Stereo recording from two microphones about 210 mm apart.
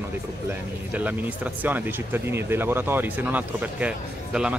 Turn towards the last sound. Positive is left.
turn(degrees=-5)  # may be behind; listen again after turning